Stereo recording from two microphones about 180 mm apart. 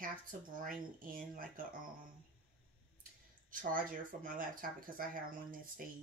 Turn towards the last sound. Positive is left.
turn(degrees=-50)  # may be behind; listen again after turning